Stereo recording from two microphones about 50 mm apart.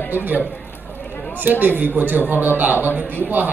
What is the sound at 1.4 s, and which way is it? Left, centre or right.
A man's voice, right.